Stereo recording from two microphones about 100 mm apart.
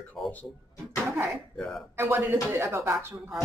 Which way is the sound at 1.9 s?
25° right (ahead or behind).